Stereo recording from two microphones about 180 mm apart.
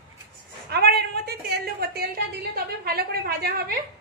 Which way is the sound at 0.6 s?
65° right (ahead or behind).